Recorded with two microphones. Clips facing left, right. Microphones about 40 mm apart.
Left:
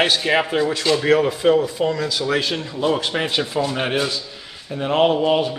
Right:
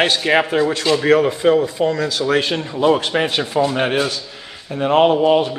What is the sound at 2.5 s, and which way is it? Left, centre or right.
A man's voice, centre.